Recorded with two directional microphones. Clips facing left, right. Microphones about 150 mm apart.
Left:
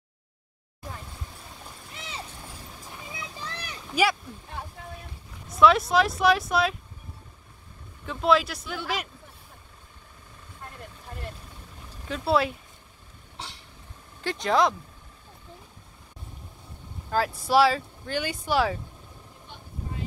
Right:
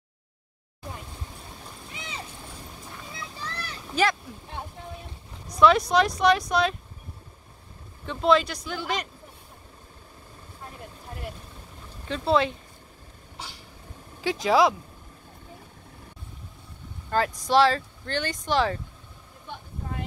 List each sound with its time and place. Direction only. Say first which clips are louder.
1.9 s a sound: right 2 dB; centre (ahead or behind)
3.1 s a sound: even; 20° left (ahead or behind)
5.5 s speech: even; centre (ahead or behind)
8.0 s speech: right 1 dB; centre (ahead or behind)
12.1 s speech: right 1 dB; 5° left (ahead or behind)
14.2 s speech: right 2 dB; centre (ahead or behind)
17.1 s speech: even; 5° left (ahead or behind)